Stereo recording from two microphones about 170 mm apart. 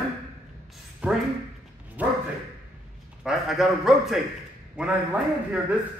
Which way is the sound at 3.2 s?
Centre (ahead or behind).